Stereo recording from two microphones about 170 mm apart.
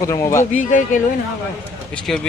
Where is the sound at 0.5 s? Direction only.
50° left (ahead or behind).